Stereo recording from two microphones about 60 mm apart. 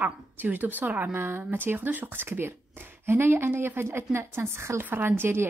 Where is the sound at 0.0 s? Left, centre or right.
Right.